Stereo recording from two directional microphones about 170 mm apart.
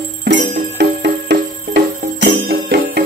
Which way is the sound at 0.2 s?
70° right (ahead or behind).